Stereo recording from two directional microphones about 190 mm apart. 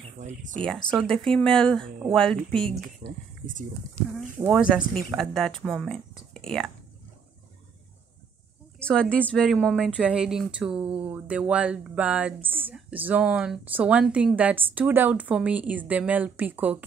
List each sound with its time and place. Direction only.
0.6 s speech: 5° left (ahead or behind)
3.0 s speech: 60° right (ahead or behind)
4.5 s speech: centre (ahead or behind)
8.7 s speech: 5° left (ahead or behind)